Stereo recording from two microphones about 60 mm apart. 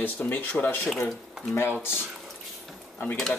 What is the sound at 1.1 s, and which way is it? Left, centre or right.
Speech, centre.